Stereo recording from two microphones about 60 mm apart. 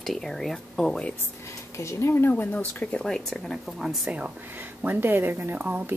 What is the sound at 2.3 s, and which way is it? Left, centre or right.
Speech, left.